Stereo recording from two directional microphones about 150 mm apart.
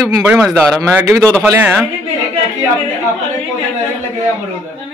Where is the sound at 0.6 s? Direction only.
20° right (ahead or behind).